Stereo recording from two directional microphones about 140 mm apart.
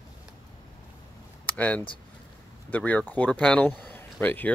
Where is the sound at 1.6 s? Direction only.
10° left (ahead or behind).